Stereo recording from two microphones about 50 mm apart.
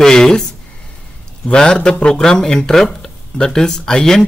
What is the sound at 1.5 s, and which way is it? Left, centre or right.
Speech, centre.